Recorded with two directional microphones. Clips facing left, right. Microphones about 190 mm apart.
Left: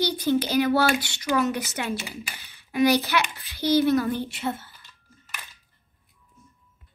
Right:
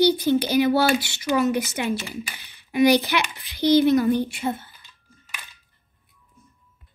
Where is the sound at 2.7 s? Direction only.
15° right (ahead or behind).